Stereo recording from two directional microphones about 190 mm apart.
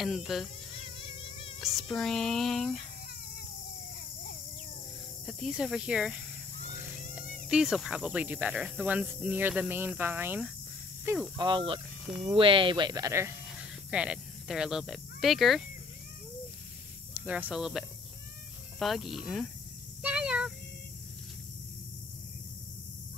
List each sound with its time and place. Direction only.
0.0 s cricket: centre (ahead or behind)
0.8 s cricket: 30° left (ahead or behind)
1.6 s cricket: centre (ahead or behind)
5.2 s cricket: 5° right (ahead or behind)
7.4 s cricket: 5° right (ahead or behind)
9.2 s speech: 10° right (ahead or behind)
11.3 s speech: 25° right (ahead or behind)
13.5 s cat: 5° right (ahead or behind)
17.1 s speech: 10° right (ahead or behind)
18.8 s cricket: centre (ahead or behind)
20.0 s a sound: 5° right (ahead or behind)